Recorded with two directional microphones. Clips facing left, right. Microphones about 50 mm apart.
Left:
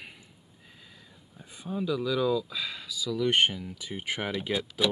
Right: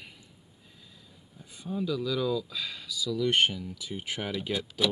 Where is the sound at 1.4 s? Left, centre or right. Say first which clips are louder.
Left 1 dB; left.